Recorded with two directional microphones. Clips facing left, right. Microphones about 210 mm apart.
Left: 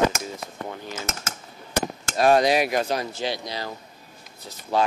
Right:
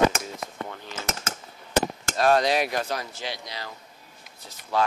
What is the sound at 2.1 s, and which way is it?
Speech, 10° left (ahead or behind).